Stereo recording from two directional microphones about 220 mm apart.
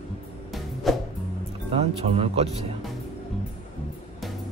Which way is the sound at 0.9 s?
Centre (ahead or behind).